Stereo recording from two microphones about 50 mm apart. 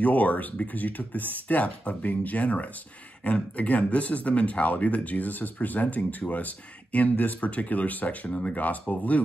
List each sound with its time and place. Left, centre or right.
0.0 s speech: left